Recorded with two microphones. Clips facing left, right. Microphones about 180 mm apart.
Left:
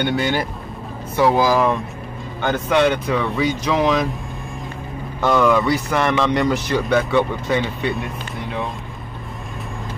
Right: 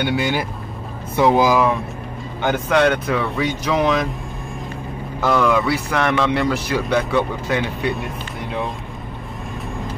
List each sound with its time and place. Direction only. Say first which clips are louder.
0.0 s a man's voice: even; 5° right (ahead or behind)
1.1 s speech: right 1 dB; 20° right (ahead or behind)
2.7 s a man's voice: even; centre (ahead or behind)
5.2 s a man's voice: left 1 dB; centre (ahead or behind)